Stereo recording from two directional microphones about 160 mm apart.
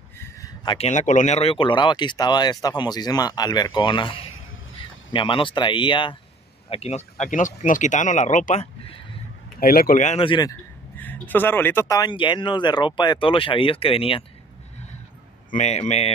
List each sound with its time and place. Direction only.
0.2 s a sound: 20° left (ahead or behind)
0.7 s speech: 45° left (ahead or behind)
7.2 s speech: 55° left (ahead or behind)
9.6 s speech: 65° left (ahead or behind); by 10.2 s 50° left (ahead or behind)
10.2 s speech: 30° left (ahead or behind)
11.0 s speech: 10° left (ahead or behind); by 14.2 s 35° left (ahead or behind)
15.5 s speech: 45° left (ahead or behind)